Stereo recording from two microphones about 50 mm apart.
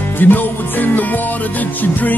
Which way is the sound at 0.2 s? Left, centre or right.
Left.